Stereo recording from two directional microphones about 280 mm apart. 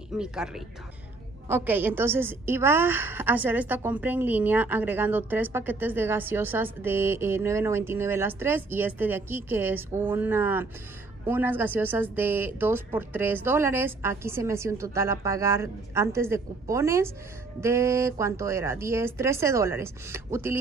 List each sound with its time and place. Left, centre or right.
0.2 s speech: centre
1.5 s a woman's voice: centre